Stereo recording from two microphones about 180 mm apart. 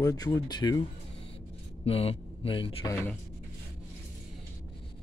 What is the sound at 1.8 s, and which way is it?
A man's voice, 35° left (ahead or behind).